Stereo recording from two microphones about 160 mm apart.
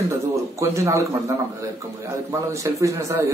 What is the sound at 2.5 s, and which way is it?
Speech, 20° right (ahead or behind).